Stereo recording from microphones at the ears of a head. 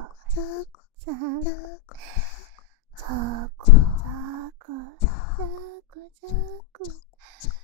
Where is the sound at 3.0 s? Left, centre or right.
Right.